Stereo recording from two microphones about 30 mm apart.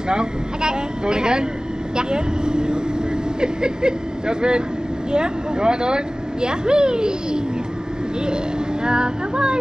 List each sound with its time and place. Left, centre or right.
0.1 s speech: right
8.8 s speech: right